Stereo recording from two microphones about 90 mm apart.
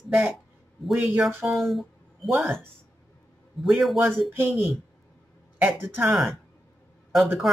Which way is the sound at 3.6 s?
Centre (ahead or behind).